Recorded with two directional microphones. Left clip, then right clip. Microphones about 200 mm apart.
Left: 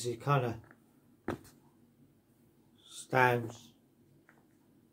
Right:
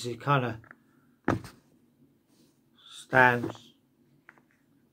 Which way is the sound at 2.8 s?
10° left (ahead or behind).